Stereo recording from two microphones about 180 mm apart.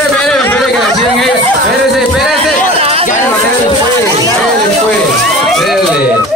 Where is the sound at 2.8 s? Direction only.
35° right (ahead or behind).